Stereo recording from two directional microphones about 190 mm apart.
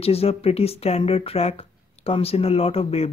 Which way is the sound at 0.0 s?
30° left (ahead or behind).